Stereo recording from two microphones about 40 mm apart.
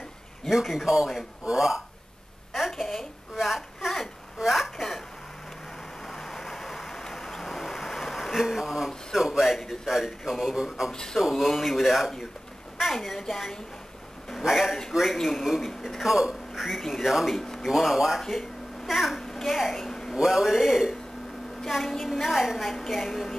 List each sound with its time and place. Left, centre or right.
0.5 s a man's voice: centre
2.5 s a sound: centre
6.1 s vehicle: centre
9.8 s a man's voice: centre
10.9 s a man's voice: centre
11.1 s a woman's voice: centre
12.7 s a sound: centre
13.1 s a man's voice: centre
14.4 s a woman's voice: centre
17.4 s a sound: centre
17.6 s a man's voice: centre
19.9 s a sound: centre
20.2 s a man's voice: centre